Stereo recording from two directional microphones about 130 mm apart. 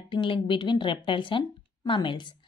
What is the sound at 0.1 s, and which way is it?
A woman's voice, 40° left (ahead or behind).